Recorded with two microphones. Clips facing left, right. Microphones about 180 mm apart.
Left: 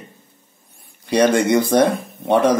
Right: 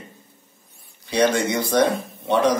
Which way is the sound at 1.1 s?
55° left (ahead or behind).